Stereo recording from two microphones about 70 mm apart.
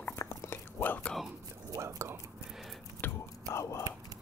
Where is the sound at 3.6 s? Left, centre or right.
Left.